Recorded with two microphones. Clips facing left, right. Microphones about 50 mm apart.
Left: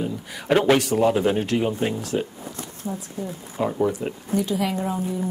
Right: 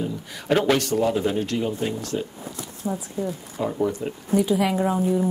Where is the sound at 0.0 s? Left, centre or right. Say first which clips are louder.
Left 1 dB; centre.